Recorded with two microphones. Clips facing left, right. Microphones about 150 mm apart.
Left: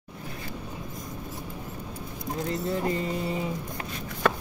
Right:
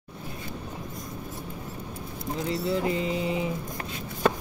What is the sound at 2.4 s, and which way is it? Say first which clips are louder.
Clip-clop: right 2 dB; 50° left (ahead or behind).